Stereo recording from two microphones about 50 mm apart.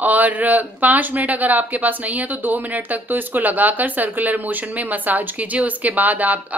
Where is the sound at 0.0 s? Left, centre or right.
Right.